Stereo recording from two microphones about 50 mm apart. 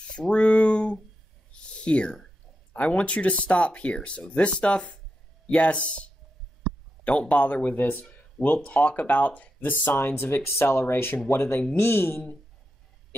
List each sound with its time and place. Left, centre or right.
0.1 s a sound: left
2.7 s speech: left
7.1 s speech: left
9.8 s speech: left